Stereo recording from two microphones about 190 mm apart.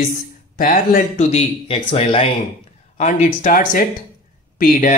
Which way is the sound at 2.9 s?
40° left (ahead or behind).